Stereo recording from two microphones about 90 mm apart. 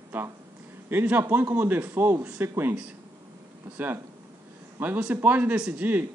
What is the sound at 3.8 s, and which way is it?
Speech, 20° right (ahead or behind).